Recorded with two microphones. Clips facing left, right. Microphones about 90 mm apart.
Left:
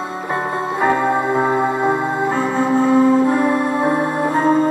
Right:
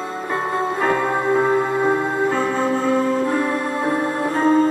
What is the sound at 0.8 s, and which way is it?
Music, 15° left (ahead or behind).